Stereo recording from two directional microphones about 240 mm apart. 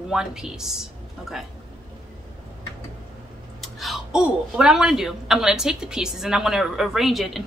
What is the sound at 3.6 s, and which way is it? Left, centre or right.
A woman's voice, centre.